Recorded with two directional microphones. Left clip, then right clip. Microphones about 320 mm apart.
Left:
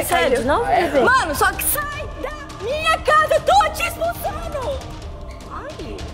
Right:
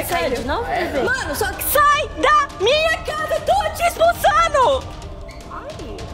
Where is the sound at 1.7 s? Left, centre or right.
Right.